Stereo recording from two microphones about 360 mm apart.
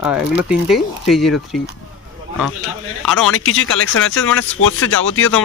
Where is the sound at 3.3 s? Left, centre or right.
Left.